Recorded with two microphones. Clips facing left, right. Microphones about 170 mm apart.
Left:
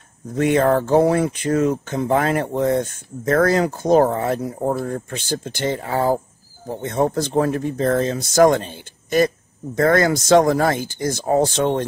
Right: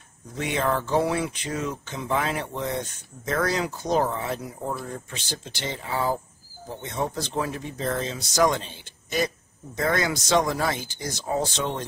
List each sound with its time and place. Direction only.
0.3 s speech: 50° left (ahead or behind)